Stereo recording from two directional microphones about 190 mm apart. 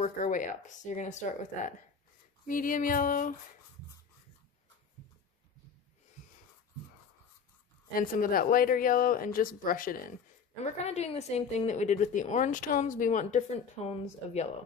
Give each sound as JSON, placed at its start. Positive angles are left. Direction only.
{"t": 0.0, "sound": "a woman's voice", "side_deg": 40}
{"t": 7.9, "sound": "speech", "side_deg": 50}
{"t": 10.6, "sound": "a woman's voice", "side_deg": 35}